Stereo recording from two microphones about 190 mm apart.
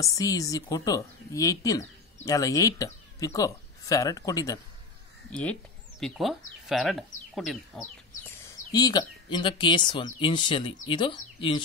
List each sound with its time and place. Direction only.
0.0 s speech: 15° left (ahead or behind)
5.3 s speech: 5° left (ahead or behind)
8.4 s speech: 20° left (ahead or behind)